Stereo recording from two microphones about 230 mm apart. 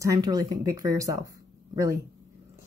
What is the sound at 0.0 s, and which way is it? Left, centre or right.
Speech, centre.